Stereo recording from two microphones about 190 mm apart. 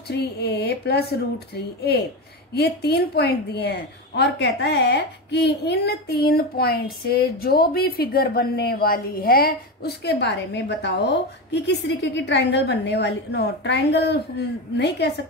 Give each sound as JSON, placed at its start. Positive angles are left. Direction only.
{"t": 0.1, "sound": "a woman's voice", "side_deg": 60}